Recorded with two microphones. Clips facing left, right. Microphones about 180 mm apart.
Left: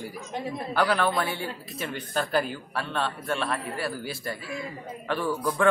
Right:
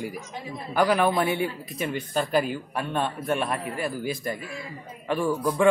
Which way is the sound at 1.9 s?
10° right (ahead or behind).